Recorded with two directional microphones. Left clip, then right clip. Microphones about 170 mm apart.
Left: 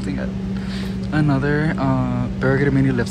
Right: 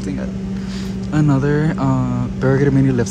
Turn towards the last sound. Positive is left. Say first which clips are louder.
# right 3 dB
turn(degrees=-10)  # may be behind; listen again after turning